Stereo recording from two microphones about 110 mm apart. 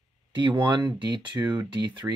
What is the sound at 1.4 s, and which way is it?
Speech, 25° right (ahead or behind).